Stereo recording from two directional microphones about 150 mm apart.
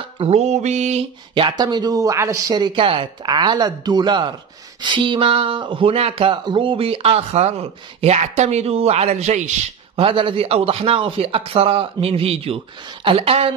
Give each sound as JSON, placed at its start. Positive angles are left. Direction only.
{"t": 0.2, "sound": "a sound", "side_deg": -45}
{"t": 1.6, "sound": "speech", "side_deg": -25}
{"t": 9.9, "sound": "speech", "side_deg": -35}